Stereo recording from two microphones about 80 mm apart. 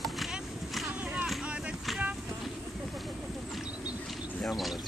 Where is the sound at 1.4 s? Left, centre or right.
Centre.